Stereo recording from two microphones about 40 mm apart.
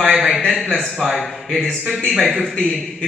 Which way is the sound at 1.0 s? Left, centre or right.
Centre.